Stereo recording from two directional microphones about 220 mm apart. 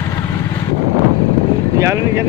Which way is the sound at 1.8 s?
10° right (ahead or behind).